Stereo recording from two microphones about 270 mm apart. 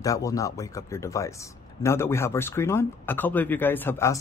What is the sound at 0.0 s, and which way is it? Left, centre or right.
Speech, centre.